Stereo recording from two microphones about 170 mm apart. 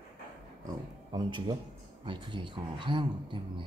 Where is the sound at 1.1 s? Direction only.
25° right (ahead or behind).